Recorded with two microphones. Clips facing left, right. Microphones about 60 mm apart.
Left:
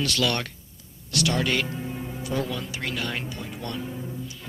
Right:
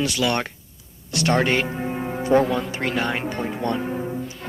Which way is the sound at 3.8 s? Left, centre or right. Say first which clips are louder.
Right 7 dB; right.